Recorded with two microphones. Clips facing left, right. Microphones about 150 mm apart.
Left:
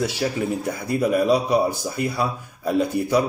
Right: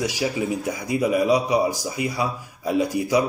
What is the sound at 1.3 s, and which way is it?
Speech, 55° left (ahead or behind).